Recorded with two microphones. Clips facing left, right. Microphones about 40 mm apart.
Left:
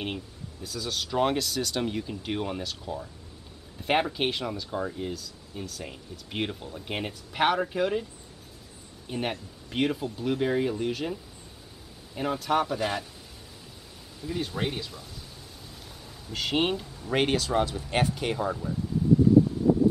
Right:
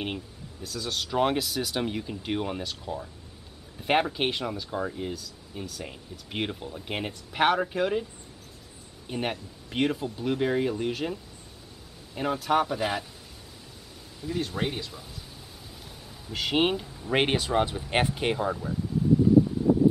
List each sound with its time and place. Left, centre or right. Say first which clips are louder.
0.0 s speech: right 1 dB; centre
12.2 s speech: right 1 dB; centre
14.2 s speech: right 1 dB; centre
16.3 s speech: right 2 dB; centre
17.1 s speech: right 1 dB; right